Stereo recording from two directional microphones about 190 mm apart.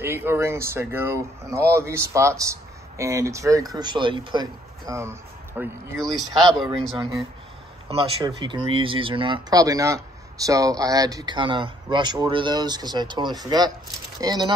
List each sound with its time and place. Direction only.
0.0 s speech: 10° right (ahead or behind)
6.6 s speech: centre (ahead or behind)
7.0 s speech: 20° right (ahead or behind)
7.9 s speech: 30° right (ahead or behind)